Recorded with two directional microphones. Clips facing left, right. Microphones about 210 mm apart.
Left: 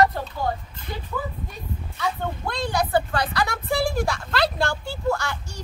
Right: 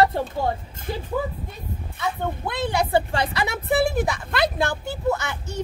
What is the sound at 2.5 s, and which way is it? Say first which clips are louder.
Speech: right 1 dB; 25° right (ahead or behind).